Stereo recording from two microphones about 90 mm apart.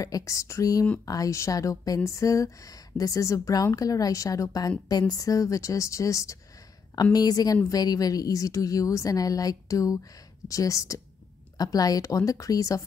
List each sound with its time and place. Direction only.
0.0 s a woman's voice: 40° left (ahead or behind)